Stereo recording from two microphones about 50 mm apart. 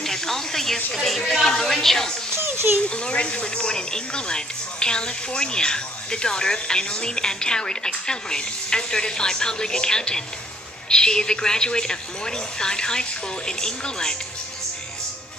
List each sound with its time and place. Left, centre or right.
0.0 s a sound: centre
1.0 s speech: centre
2.3 s children playing: right
2.9 s speech: centre